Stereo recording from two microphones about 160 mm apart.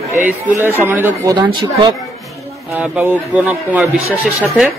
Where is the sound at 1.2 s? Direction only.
25° right (ahead or behind).